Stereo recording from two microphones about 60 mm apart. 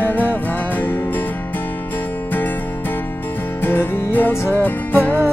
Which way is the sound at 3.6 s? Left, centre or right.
Left.